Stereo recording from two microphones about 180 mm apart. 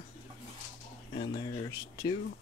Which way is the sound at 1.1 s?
30° left (ahead or behind).